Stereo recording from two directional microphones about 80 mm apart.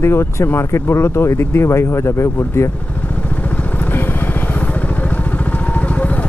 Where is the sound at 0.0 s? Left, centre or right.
Left.